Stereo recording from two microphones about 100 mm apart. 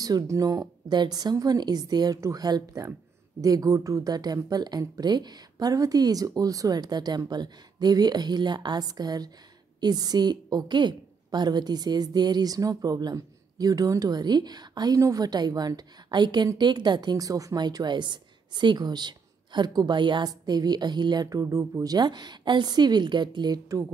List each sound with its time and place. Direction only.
0.0 s a woman's voice: 35° right (ahead or behind)